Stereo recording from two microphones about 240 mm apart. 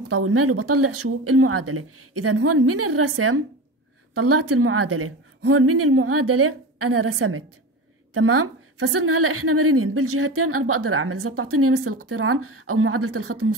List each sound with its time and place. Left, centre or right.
0.1 s a woman's voice: right